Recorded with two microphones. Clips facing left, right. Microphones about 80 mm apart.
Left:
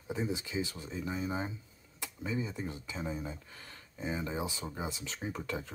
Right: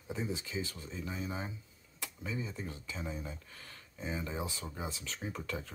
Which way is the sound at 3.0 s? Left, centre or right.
Centre.